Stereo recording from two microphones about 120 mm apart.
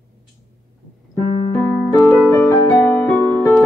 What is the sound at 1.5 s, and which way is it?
Piano, 15° left (ahead or behind).